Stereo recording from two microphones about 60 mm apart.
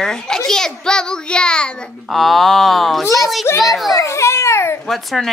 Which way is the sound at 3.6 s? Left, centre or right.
Centre.